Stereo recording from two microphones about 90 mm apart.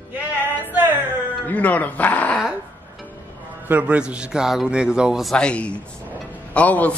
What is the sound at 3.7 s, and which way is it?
A man's voice, 15° right (ahead or behind).